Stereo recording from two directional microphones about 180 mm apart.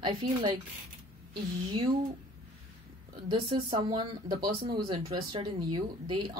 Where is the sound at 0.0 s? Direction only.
25° right (ahead or behind).